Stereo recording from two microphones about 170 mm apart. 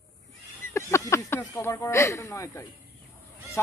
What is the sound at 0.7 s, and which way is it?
A man's voice, 15° left (ahead or behind).